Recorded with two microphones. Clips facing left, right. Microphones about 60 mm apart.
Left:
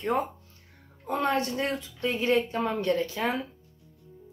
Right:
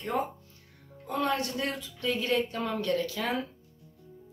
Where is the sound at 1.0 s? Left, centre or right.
Left.